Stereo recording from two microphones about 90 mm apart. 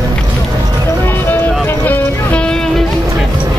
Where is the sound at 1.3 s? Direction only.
20° left (ahead or behind).